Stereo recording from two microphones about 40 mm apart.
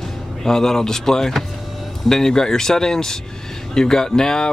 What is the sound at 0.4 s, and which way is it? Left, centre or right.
Speech, centre.